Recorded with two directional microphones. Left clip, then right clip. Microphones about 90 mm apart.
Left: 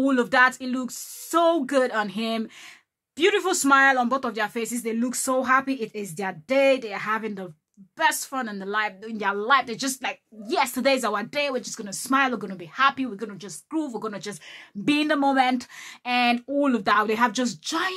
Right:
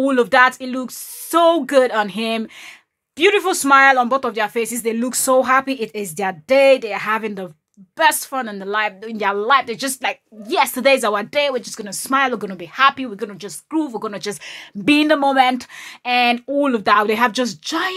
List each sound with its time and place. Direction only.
0.0 s a woman's voice: 30° right (ahead or behind)
1.4 s a woman's voice: 35° right (ahead or behind)
12.4 s speech: 40° right (ahead or behind)
14.1 s speech: 50° right (ahead or behind)
14.9 s speech: 35° right (ahead or behind)